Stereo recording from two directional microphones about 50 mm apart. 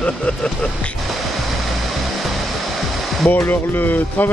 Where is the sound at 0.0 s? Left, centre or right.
Left.